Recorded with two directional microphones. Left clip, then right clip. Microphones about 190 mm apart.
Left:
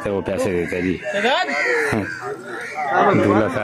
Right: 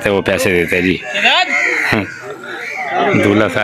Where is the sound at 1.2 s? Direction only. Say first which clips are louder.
Right 7 dB; 60° left (ahead or behind).